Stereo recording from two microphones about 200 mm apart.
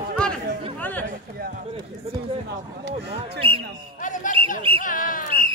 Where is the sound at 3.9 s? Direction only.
40° left (ahead or behind).